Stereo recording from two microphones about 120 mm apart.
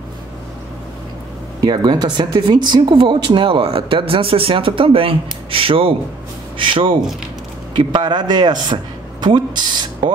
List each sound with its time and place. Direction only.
1.6 s a man's voice: 35° right (ahead or behind)